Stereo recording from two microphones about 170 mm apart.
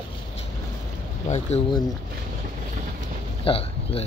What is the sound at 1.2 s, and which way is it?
Speech, 40° left (ahead or behind).